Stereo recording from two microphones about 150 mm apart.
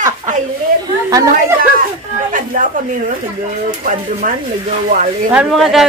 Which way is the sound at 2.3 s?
60° right (ahead or behind).